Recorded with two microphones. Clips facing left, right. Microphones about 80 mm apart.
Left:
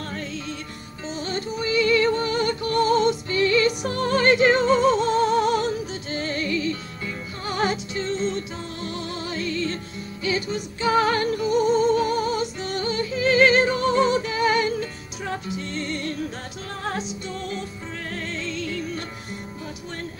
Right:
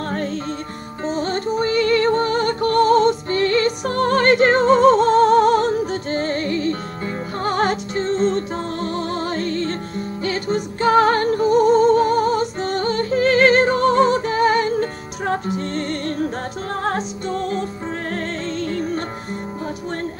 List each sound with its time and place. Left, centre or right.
0.1 s music: right